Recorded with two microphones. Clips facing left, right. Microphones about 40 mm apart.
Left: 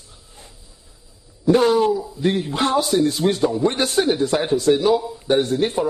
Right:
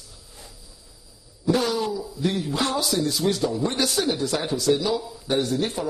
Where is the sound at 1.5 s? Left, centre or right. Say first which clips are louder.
Left 8 dB; left.